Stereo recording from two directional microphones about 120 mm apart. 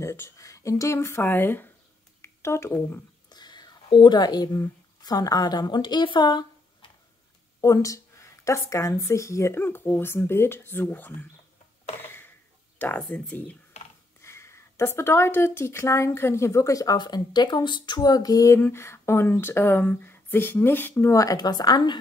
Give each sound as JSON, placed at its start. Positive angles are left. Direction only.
{"t": 0.0, "sound": "speech", "side_deg": 25}
{"t": 2.2, "sound": "a sound", "side_deg": 20}
{"t": 3.3, "sound": "speech", "side_deg": 35}
{"t": 7.6, "sound": "speech", "side_deg": 25}
{"t": 12.0, "sound": "a sound", "side_deg": 15}
{"t": 12.7, "sound": "speech", "side_deg": 15}